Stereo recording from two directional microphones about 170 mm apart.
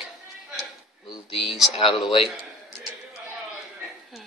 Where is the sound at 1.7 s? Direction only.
30° left (ahead or behind).